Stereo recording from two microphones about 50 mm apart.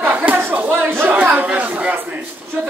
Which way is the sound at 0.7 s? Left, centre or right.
Right.